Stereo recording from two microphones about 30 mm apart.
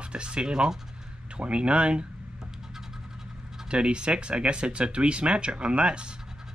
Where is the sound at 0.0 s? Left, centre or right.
Right.